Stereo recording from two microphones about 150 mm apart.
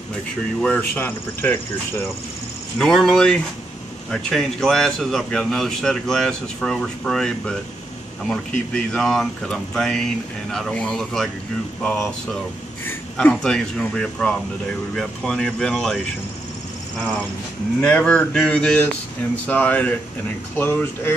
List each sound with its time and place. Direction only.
0.6 s speech: 10° left (ahead or behind)
2.8 s speech: 5° left (ahead or behind)
12.8 s speech: 5° left (ahead or behind)
17.7 s speech: 10° left (ahead or behind)